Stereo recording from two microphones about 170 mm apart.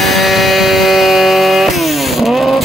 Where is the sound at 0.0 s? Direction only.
Centre (ahead or behind).